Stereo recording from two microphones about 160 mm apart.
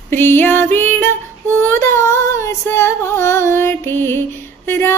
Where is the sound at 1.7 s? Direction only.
15° left (ahead or behind).